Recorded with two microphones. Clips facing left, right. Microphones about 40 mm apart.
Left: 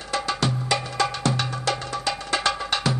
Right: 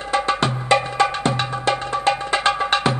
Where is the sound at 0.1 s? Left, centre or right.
Right.